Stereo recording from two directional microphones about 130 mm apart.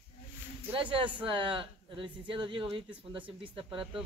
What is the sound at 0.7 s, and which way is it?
Speech, 40° right (ahead or behind).